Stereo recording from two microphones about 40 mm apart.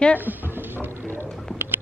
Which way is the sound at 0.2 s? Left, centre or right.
Right.